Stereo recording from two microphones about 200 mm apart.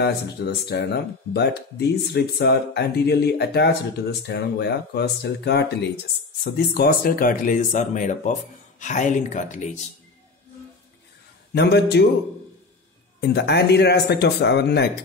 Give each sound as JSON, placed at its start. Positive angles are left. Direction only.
{"t": 0.0, "sound": "speech", "side_deg": 55}
{"t": 11.5, "sound": "speech", "side_deg": 55}
{"t": 13.2, "sound": "speech", "side_deg": 55}